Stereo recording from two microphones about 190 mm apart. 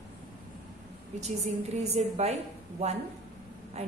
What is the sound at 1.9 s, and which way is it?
A woman's voice, 35° right (ahead or behind).